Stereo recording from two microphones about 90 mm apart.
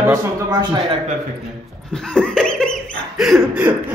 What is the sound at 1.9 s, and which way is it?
Dog, 10° left (ahead or behind).